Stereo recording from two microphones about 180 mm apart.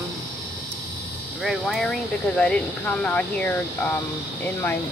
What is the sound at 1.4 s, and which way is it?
Speech, centre (ahead or behind).